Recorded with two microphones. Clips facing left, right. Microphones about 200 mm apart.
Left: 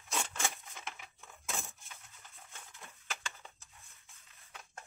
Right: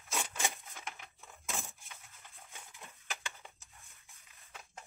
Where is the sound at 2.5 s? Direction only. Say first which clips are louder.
Right 1 dB; 15° right (ahead or behind).